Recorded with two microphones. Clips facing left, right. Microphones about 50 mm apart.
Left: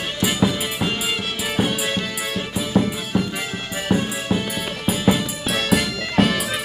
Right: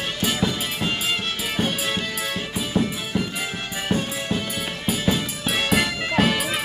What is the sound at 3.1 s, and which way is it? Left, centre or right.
Music, centre.